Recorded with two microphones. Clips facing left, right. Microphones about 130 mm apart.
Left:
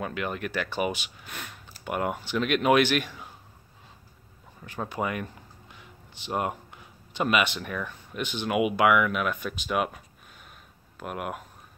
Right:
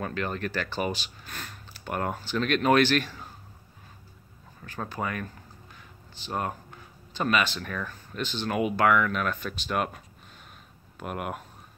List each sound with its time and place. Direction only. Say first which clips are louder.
0.0 s speech: even; 10° left (ahead or behind)
4.7 s speech: left 2 dB; 15° left (ahead or behind); by 11.4 s centre (ahead or behind)